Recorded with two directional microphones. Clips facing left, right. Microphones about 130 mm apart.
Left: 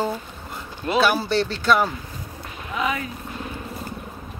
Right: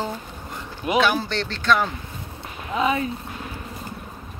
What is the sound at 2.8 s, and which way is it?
Speech, 30° right (ahead or behind).